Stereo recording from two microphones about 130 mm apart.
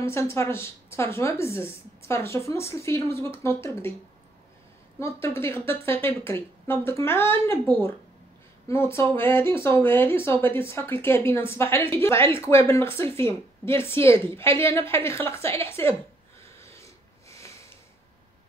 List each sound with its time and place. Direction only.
0.0 s speech: 20° left (ahead or behind)
5.0 s speech: 20° left (ahead or behind)
8.6 s speech: 20° left (ahead or behind)
16.5 s a sound: 20° left (ahead or behind)